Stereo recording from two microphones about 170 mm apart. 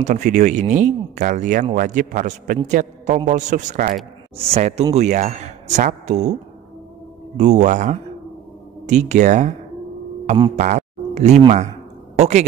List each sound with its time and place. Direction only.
0.0 s speech: 45° right (ahead or behind)
7.3 s speech: 45° right (ahead or behind)
10.5 s speech: 45° right (ahead or behind)